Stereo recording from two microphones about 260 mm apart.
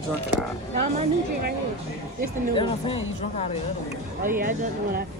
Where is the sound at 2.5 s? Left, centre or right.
Centre.